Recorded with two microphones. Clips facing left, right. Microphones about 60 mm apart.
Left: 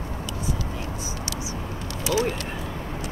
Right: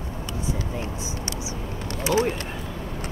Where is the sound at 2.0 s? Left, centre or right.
Right.